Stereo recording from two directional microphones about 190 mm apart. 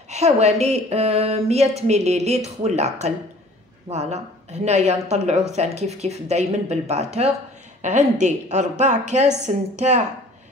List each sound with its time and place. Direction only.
0.1 s speech: 35° right (ahead or behind)